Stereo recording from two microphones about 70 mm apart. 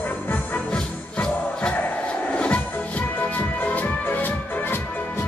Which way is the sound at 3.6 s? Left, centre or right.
Left.